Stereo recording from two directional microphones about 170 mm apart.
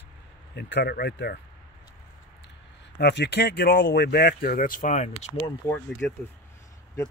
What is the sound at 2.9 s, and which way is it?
Speech, 90° left.